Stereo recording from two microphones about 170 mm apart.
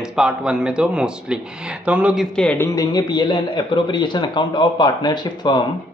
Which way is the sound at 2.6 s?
20° left (ahead or behind).